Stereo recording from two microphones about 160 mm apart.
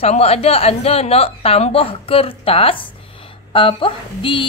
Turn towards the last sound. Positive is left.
turn(degrees=30)  # may be behind; listen again after turning